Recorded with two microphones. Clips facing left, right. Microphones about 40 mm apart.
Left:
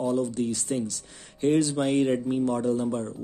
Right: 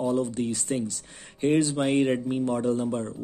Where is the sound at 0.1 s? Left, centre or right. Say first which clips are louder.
Even; centre.